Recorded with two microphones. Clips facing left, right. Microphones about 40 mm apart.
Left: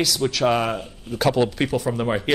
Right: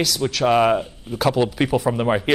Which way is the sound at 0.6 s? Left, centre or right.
Centre.